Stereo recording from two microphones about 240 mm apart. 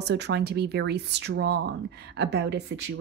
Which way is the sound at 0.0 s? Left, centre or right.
Right.